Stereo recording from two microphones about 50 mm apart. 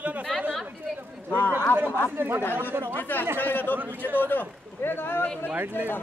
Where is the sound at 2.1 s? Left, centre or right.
Right.